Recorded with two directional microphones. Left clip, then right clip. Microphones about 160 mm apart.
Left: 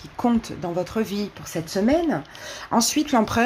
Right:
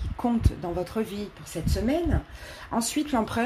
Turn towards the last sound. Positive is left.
turn(degrees=15)  # may be behind; listen again after turning